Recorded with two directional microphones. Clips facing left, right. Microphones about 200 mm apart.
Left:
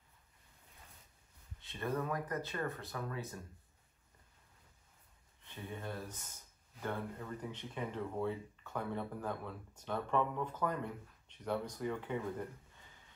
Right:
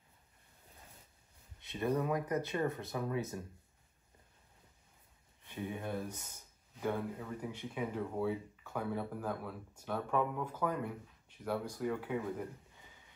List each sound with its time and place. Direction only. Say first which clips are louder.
1.6 s speech: right 4 dB; 15° right (ahead or behind)
5.5 s speech: right 5 dB; 15° right (ahead or behind)